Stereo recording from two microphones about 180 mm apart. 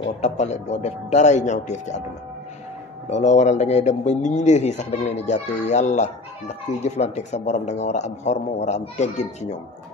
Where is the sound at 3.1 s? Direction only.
40° left (ahead or behind).